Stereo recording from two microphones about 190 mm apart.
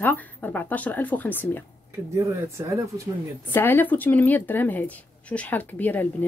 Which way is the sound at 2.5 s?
15° right (ahead or behind).